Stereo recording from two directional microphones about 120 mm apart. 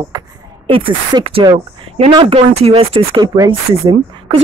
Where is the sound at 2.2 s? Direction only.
55° right (ahead or behind).